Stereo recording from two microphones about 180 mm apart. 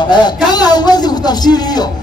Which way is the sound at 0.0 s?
25° left (ahead or behind).